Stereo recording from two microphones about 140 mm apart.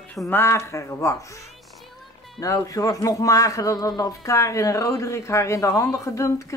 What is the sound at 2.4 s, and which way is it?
A man's voice, 25° left (ahead or behind).